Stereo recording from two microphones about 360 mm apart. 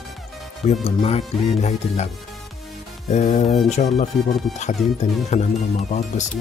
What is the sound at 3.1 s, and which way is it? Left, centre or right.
Speech, centre.